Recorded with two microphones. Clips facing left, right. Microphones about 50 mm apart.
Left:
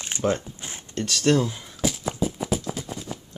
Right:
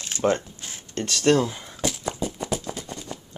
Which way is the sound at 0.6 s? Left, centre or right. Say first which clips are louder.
Left 2 dB; left.